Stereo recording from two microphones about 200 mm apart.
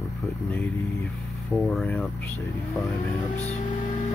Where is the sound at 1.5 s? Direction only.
Centre (ahead or behind).